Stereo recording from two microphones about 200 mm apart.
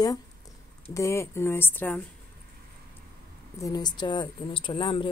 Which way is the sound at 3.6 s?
20° left (ahead or behind).